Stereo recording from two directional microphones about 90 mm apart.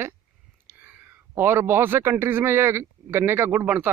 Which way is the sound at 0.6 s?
20° right (ahead or behind).